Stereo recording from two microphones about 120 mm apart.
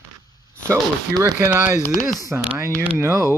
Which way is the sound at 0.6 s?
20° right (ahead or behind).